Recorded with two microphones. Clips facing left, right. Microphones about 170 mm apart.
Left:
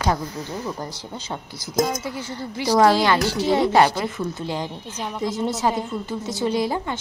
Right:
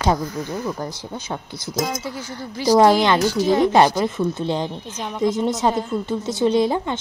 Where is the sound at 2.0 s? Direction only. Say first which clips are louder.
Even; 20° left (ahead or behind).